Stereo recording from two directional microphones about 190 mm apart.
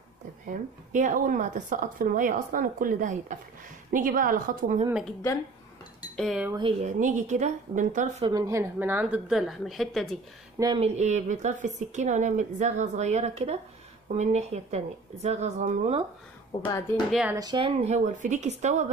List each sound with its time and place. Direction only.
0.5 s speech: 45° right (ahead or behind)
6.1 s speech: centre (ahead or behind)
6.8 s speech: 40° right (ahead or behind)
8.3 s a woman's voice: 15° right (ahead or behind); by 10.1 s centre (ahead or behind)
10.6 s speech: 25° right (ahead or behind)
11.0 s speech: 40° right (ahead or behind)
16.5 s speech: 20° left (ahead or behind)
17.1 s speech: 5° right (ahead or behind)
17.4 s speech: 25° right (ahead or behind)